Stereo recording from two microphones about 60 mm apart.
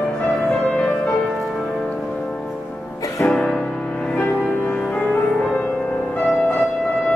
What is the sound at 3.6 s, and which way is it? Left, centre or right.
Music, centre.